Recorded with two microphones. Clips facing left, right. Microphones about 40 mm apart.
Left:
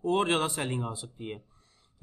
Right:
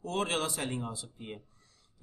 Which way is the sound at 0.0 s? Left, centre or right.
Left.